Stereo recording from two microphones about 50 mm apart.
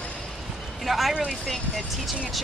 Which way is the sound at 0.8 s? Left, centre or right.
Centre.